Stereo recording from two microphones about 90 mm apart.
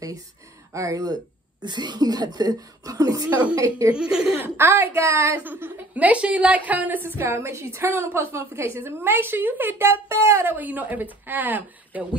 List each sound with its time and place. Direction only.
0.7 s speech: 40° right (ahead or behind)
1.6 s speech: 55° right (ahead or behind)
3.9 s a woman's voice: 10° right (ahead or behind)
4.4 s a woman's voice: 25° right (ahead or behind)
5.4 s a woman's voice: 20° right (ahead or behind)
7.2 s a woman's voice: 30° right (ahead or behind)
10.5 s a woman's voice: 20° right (ahead or behind)